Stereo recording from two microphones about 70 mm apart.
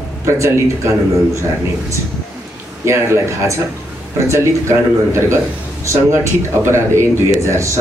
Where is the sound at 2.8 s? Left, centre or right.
Right.